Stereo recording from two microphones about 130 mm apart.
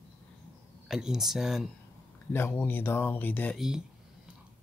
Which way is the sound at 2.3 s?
15° left (ahead or behind).